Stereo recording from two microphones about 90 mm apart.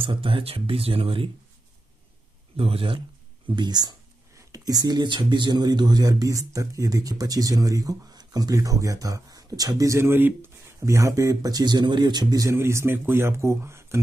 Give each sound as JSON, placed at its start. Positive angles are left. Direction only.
{"t": 0.0, "sound": "speech", "side_deg": -85}
{"t": 2.5, "sound": "speech", "side_deg": -90}
{"t": 3.4, "sound": "speech", "side_deg": -55}
{"t": 12.5, "sound": "speech", "side_deg": -30}